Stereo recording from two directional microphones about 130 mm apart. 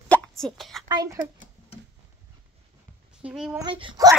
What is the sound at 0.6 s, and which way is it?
Speech, centre (ahead or behind).